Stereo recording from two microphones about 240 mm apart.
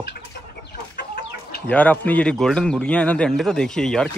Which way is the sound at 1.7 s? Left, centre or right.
Centre.